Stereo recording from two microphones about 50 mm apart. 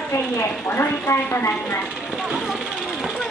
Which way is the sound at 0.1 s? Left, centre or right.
Left.